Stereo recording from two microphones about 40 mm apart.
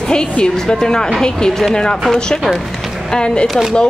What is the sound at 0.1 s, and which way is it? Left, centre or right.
Speech, left.